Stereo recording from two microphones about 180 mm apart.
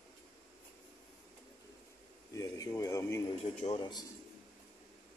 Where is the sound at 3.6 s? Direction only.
40° left (ahead or behind).